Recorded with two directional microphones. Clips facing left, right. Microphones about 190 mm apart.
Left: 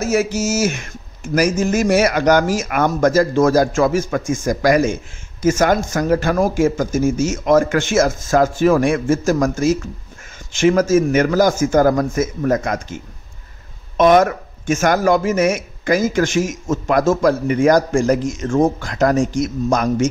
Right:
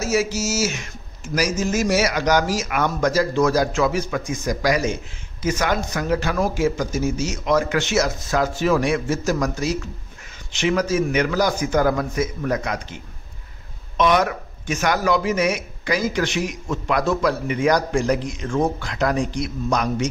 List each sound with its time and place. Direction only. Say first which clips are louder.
0.0 s speech: left 4 dB; 55° left (ahead or behind)